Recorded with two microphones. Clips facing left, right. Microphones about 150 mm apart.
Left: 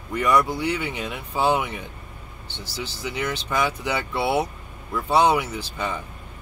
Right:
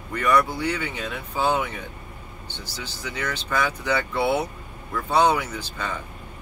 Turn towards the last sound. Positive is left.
turn(degrees=15)  # may be behind; listen again after turning